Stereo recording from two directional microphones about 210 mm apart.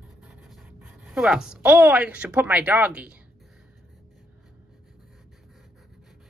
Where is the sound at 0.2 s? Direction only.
5° right (ahead or behind).